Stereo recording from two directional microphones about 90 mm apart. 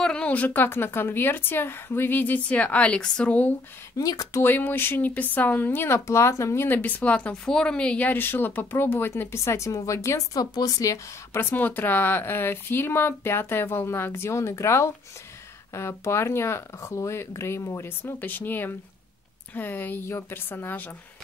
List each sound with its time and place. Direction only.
0.0 s speech: 10° left (ahead or behind)
4.0 s speech: 40° left (ahead or behind)
4.4 s speech: 20° left (ahead or behind)